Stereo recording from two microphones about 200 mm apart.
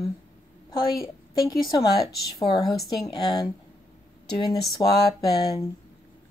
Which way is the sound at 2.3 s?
20° left (ahead or behind).